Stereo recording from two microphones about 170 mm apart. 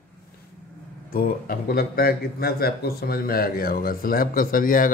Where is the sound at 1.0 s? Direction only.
55° left (ahead or behind).